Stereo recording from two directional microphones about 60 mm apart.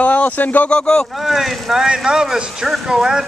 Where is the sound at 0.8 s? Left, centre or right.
Centre.